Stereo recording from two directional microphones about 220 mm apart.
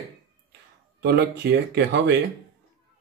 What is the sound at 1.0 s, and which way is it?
Speech, 45° right (ahead or behind).